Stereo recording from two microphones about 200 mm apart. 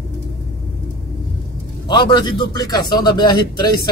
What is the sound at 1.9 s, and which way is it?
A man's voice, 20° left (ahead or behind).